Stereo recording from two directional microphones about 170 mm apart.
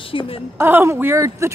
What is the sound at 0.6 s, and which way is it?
Speech, 15° right (ahead or behind).